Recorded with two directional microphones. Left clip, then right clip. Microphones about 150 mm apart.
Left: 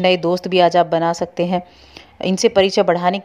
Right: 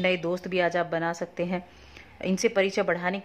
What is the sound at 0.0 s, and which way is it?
A woman's voice, 35° left (ahead or behind).